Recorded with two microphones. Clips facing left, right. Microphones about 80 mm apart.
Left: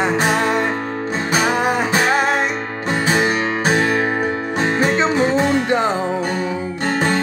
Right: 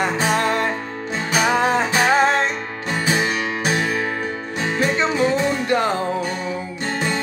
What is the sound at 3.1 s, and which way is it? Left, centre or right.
Music, left.